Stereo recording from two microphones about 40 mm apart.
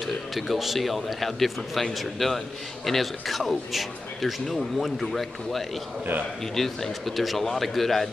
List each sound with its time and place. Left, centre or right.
0.0 s a man's voice: centre